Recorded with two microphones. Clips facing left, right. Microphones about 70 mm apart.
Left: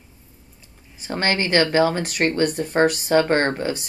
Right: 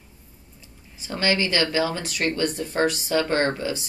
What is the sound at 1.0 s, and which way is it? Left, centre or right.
Speech, left.